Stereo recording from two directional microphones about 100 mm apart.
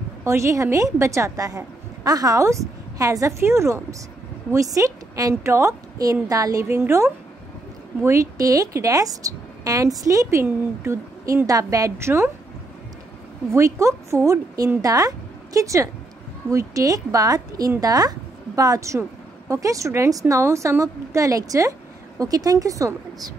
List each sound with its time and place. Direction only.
0.2 s a woman's voice: 30° right (ahead or behind)
13.5 s a woman's voice: 30° right (ahead or behind)